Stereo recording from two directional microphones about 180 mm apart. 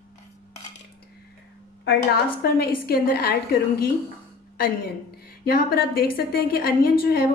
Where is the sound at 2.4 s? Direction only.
55° left (ahead or behind).